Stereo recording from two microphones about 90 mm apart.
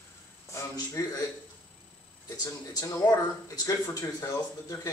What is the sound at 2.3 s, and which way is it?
Speech, 45° left (ahead or behind).